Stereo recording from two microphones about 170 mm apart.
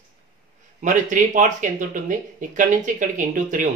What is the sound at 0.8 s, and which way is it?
Speech, 50° right (ahead or behind).